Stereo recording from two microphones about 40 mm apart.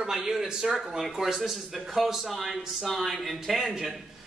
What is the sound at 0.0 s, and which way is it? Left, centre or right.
Speech, centre.